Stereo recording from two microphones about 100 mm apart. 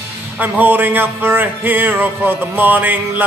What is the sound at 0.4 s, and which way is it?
A man's voice, 20° right (ahead or behind).